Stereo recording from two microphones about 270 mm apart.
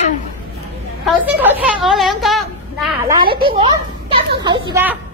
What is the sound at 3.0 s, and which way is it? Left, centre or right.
A woman's voice, centre.